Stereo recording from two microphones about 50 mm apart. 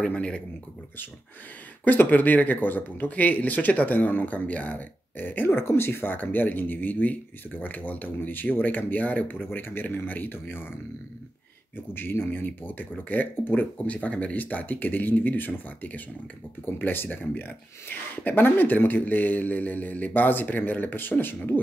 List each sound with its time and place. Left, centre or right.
0.0 s speech: left
1.9 s speech: left
5.7 s speech: left
6.1 s speech: left
11.7 s speech: left